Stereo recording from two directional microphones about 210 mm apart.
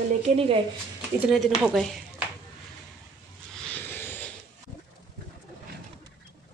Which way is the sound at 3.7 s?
10° left (ahead or behind).